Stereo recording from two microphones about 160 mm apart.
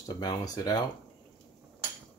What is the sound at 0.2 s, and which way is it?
Speech, 25° left (ahead or behind).